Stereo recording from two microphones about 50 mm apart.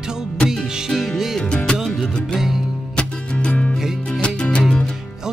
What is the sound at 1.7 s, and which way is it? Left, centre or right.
Music, centre.